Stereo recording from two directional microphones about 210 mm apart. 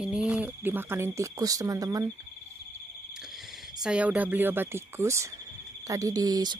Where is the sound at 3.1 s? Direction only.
Centre (ahead or behind).